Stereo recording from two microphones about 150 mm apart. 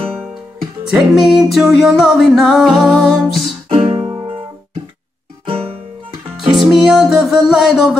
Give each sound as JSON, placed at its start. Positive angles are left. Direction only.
{"t": 0.9, "sound": "music", "side_deg": -5}
{"t": 3.6, "sound": "music", "side_deg": -35}
{"t": 5.5, "sound": "music", "side_deg": -40}
{"t": 6.5, "sound": "music", "side_deg": 0}